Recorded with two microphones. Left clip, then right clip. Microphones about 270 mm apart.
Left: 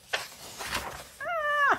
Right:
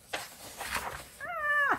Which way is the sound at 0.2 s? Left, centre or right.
Centre.